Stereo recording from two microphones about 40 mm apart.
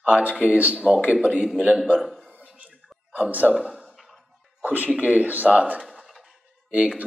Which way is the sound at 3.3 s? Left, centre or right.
Right.